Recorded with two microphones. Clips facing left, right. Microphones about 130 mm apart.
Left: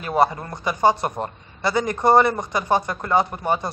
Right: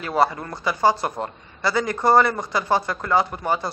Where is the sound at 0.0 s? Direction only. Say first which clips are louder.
Left 1 dB; 20° left (ahead or behind).